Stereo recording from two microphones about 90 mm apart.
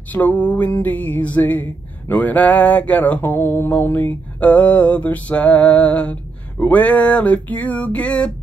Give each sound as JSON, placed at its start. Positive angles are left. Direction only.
{"t": 0.1, "sound": "music", "side_deg": 15}